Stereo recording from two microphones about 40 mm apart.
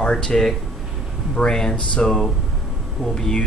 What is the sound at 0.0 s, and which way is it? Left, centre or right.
Speech, centre.